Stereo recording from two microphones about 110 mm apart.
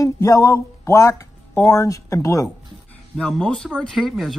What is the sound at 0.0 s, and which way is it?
Speech, 30° left (ahead or behind).